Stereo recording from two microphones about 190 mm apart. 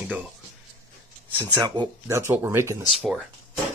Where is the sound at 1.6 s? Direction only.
20° right (ahead or behind).